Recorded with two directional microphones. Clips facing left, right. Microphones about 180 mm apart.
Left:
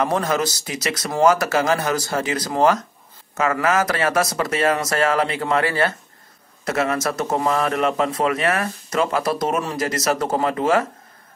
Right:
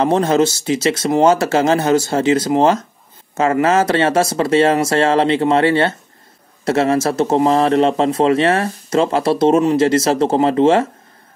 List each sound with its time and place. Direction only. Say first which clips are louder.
0.0 s a man's voice: right 7 dB; 25° right (ahead or behind)